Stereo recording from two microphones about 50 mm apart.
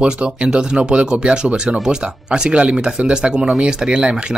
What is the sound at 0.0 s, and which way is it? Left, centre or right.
Speech, centre.